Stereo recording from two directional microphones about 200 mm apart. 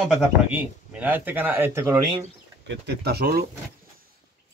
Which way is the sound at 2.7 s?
55° right (ahead or behind).